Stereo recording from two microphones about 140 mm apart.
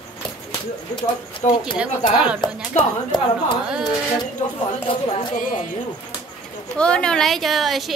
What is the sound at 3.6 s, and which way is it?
Speech, 5° right (ahead or behind).